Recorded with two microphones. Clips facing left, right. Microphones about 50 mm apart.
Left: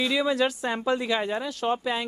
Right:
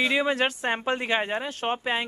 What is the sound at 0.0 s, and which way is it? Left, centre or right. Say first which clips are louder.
Speech: even; right.